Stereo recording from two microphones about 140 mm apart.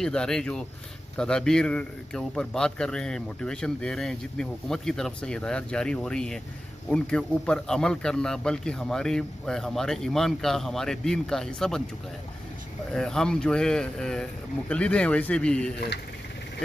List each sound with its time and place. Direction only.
0.0 s a man's voice: 5° left (ahead or behind)
12.9 s a man's voice: 5° left (ahead or behind)